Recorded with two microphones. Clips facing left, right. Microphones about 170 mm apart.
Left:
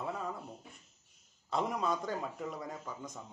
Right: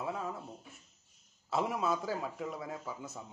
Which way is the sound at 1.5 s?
5° right (ahead or behind).